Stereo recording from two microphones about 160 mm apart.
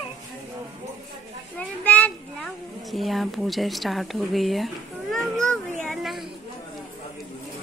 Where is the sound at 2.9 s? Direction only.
Centre (ahead or behind).